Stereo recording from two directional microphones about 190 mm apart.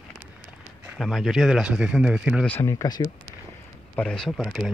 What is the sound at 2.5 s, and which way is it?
Speech, 15° left (ahead or behind).